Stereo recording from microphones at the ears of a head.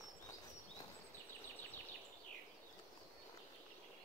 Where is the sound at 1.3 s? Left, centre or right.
Right.